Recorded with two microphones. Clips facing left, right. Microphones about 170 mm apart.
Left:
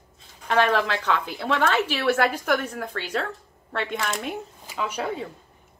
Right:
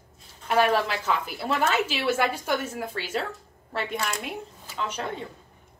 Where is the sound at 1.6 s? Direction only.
65° left (ahead or behind).